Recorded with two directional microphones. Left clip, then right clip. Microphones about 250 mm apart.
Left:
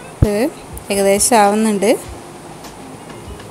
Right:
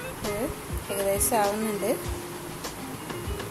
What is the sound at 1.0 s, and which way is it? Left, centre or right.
Speech, left.